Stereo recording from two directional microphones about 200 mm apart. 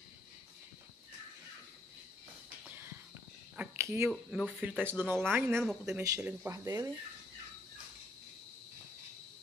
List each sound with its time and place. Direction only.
3.5 s a sound: 10° right (ahead or behind)
4.1 s speech: centre (ahead or behind)
5.6 s speech: centre (ahead or behind)
6.0 s speech: 10° right (ahead or behind)